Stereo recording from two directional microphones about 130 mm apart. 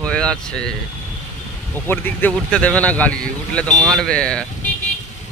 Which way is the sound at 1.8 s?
15° left (ahead or behind).